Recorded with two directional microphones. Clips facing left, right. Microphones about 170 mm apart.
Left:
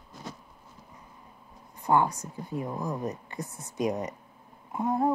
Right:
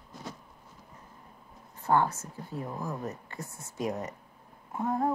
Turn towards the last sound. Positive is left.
turn(degrees=15)  # may be behind; listen again after turning